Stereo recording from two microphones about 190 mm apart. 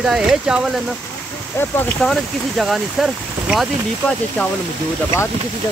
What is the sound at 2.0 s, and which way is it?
Speech, centre (ahead or behind).